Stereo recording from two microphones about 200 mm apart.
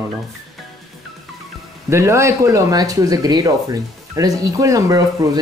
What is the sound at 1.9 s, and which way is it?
Speech, 15° right (ahead or behind).